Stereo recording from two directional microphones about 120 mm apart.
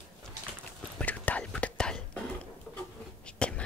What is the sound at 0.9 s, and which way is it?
Whispering, 10° left (ahead or behind).